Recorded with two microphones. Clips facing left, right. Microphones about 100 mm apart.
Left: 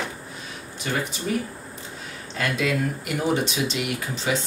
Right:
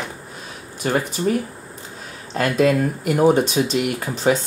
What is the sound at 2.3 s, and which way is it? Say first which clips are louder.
Speech: right 8 dB; 45° right (ahead or behind).